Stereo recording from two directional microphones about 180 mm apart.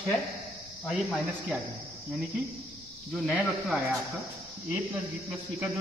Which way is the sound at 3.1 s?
Centre (ahead or behind).